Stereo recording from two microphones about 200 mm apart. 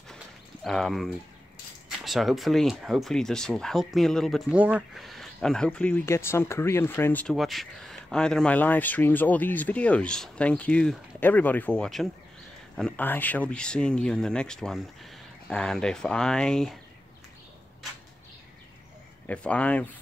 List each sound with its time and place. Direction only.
0.7 s speech: centre (ahead or behind)
19.2 s speech: 5° left (ahead or behind)